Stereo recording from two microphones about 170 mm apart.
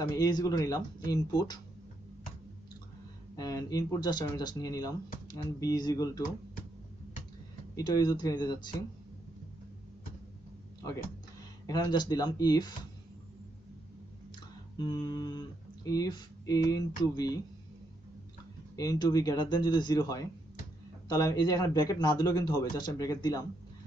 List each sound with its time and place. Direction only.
0.0 s speech: 20° left (ahead or behind)
3.3 s speech: 20° left (ahead or behind)
7.7 s speech: 20° left (ahead or behind)
11.6 s speech: 25° left (ahead or behind)
14.8 s speech: 25° left (ahead or behind)
18.8 s speech: 20° left (ahead or behind)